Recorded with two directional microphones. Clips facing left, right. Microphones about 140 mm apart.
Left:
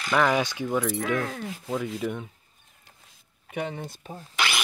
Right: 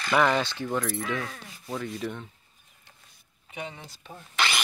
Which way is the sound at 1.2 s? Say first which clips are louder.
Left 7 dB; 55° left (ahead or behind).